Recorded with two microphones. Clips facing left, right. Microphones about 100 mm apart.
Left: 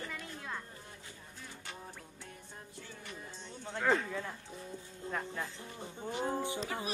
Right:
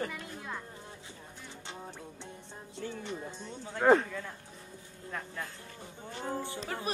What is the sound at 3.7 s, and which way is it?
Speech, 40° right (ahead or behind).